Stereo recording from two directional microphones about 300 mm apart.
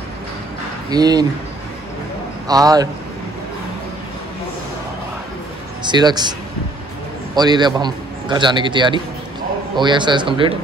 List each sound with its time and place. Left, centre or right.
0.8 s a man's voice: centre
2.4 s a man's voice: centre
5.9 s a man's voice: centre
7.3 s a man's voice: centre